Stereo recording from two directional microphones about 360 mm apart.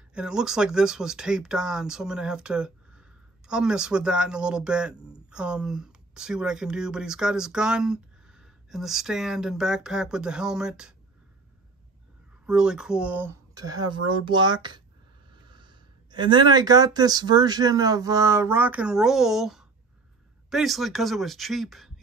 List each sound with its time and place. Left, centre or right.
0.1 s speech: centre
12.4 s speech: centre